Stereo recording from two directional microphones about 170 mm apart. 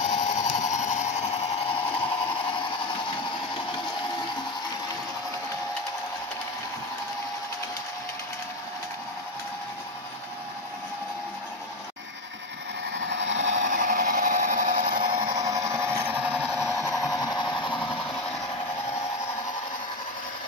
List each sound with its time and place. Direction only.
0.0 s tools: 45° left (ahead or behind)
0.5 s a sound: 45° left (ahead or behind)
13.1 s vehicle: 90° right
13.7 s tools: 50° right (ahead or behind)
15.2 s tools: 20° right (ahead or behind); by 17.0 s centre (ahead or behind)